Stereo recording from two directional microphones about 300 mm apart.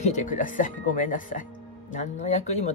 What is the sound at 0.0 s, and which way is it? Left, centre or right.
Speech, left.